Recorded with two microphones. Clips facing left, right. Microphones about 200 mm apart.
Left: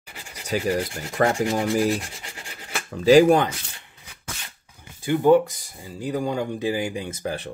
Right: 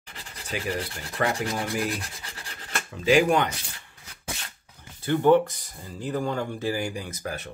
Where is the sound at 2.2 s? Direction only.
15° left (ahead or behind).